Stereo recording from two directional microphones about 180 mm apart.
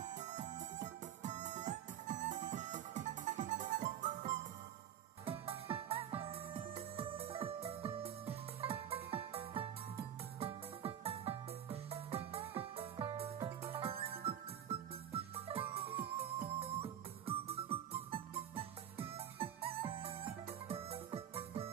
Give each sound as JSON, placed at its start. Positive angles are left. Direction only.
{"t": 0.1, "sound": "music", "side_deg": -40}
{"t": 13.4, "sound": "music", "side_deg": -15}
{"t": 13.7, "sound": "music", "side_deg": -30}